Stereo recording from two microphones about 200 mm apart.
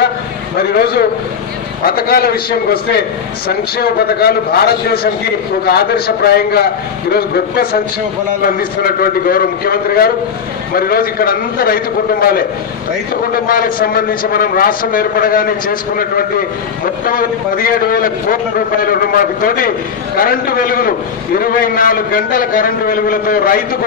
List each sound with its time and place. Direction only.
0.6 s a man's voice: 50° left (ahead or behind)